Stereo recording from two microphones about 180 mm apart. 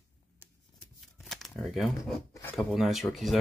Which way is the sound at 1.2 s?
Centre (ahead or behind).